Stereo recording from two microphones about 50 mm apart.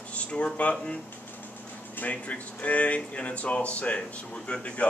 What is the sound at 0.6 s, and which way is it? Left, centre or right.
Speech, left.